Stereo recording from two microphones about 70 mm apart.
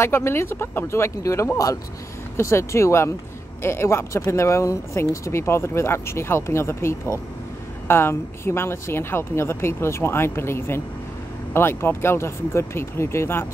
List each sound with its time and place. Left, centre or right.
0.0 s speech: left